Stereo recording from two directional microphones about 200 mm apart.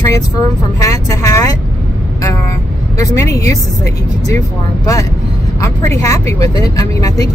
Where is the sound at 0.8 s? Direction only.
15° left (ahead or behind).